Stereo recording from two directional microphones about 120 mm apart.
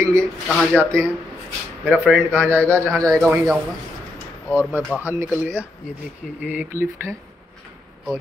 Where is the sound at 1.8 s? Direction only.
15° right (ahead or behind).